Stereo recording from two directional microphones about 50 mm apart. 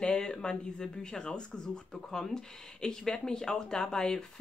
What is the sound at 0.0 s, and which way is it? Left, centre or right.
Speech, centre.